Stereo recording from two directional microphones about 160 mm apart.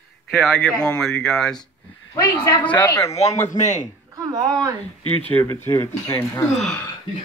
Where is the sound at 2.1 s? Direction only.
15° left (ahead or behind).